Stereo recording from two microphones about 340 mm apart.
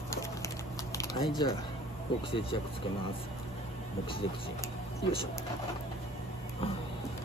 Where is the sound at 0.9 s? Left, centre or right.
Centre.